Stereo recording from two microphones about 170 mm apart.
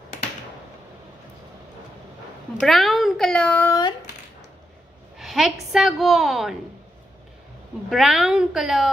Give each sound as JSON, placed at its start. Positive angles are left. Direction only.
{"t": 2.6, "sound": "a woman's voice", "side_deg": 0}
{"t": 5.2, "sound": "a woman's voice", "side_deg": 0}
{"t": 7.9, "sound": "a woman's voice", "side_deg": 0}